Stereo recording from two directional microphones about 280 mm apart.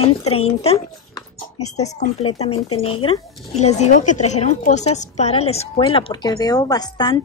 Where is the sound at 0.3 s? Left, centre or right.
Left.